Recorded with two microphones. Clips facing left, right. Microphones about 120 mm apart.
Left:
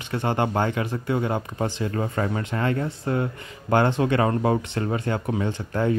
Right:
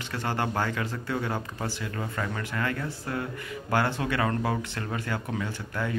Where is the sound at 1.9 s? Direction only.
35° left (ahead or behind).